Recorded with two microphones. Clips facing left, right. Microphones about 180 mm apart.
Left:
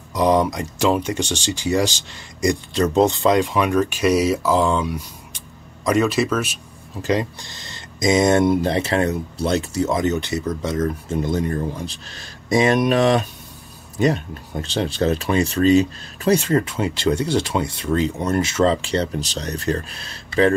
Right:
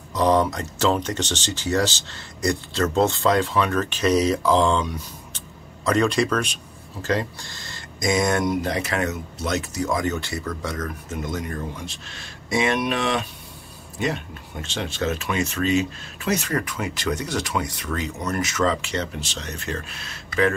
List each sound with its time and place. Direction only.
0.1 s speech: 10° left (ahead or behind)
7.0 s speech: 15° left (ahead or behind)